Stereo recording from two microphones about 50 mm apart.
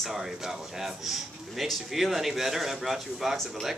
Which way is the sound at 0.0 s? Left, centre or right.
Centre.